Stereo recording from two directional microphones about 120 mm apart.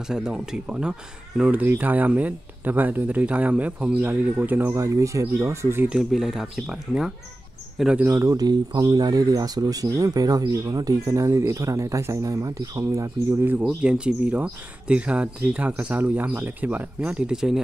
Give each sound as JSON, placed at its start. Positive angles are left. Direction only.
{"t": 0.1, "sound": "speech", "side_deg": -5}
{"t": 5.9, "sound": "speech", "side_deg": -5}
{"t": 13.8, "sound": "speech", "side_deg": -10}